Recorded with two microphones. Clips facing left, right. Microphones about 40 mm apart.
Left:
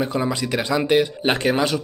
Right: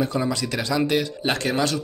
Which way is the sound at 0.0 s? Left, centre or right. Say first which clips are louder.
Left 1 dB; left.